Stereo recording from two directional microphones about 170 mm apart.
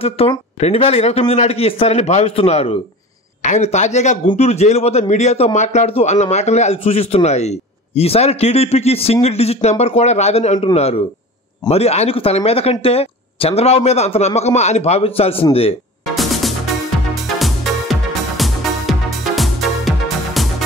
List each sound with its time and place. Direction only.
0.0 s a man's voice: 35° left (ahead or behind)
16.2 s music: centre (ahead or behind)